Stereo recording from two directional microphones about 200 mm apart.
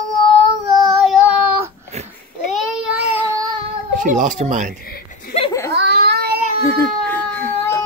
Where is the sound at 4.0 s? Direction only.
40° right (ahead or behind).